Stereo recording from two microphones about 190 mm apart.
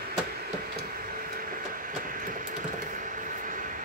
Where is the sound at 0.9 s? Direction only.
50° right (ahead or behind).